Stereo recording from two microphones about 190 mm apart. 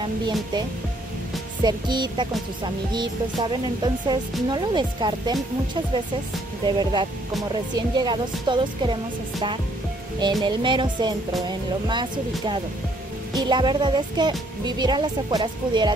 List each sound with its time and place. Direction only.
1.6 s music: 25° right (ahead or behind)
6.6 s music: 25° right (ahead or behind)
10.4 s music: 25° right (ahead or behind)